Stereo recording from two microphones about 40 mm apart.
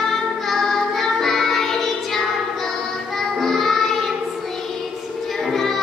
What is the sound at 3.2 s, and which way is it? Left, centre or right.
Child singing, centre.